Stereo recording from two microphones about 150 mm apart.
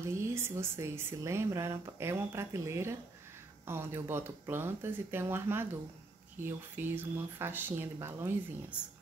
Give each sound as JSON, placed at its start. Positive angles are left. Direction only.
{"t": 0.0, "sound": "speech", "side_deg": -15}